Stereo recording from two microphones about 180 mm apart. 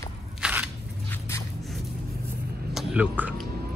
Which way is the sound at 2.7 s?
5° right (ahead or behind).